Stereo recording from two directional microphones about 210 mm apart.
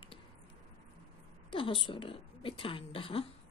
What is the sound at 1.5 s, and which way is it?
Speech, 25° left (ahead or behind).